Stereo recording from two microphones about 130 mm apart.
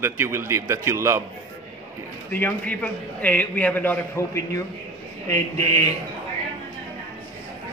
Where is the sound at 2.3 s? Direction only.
15° left (ahead or behind).